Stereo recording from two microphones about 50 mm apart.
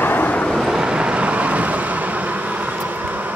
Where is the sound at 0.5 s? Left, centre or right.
Centre.